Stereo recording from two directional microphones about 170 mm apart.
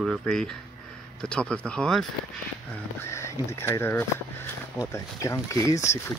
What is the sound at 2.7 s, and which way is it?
Speech, 15° left (ahead or behind).